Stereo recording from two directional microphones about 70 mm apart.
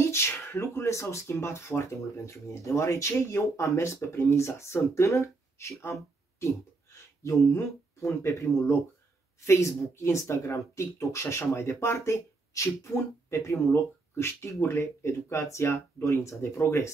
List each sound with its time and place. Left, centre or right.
0.0 s speech: left